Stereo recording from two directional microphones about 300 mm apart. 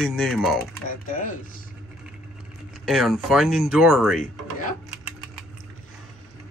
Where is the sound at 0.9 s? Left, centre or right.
Left.